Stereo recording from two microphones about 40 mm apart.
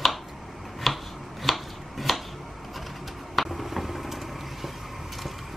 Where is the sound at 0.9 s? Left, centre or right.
Centre.